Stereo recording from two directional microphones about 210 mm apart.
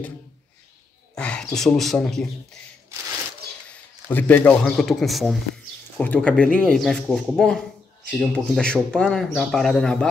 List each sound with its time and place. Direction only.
1.1 s speech: 5° left (ahead or behind)
4.1 s speech: 10° left (ahead or behind)